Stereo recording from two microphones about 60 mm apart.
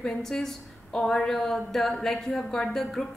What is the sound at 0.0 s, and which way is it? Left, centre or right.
A woman's voice, centre.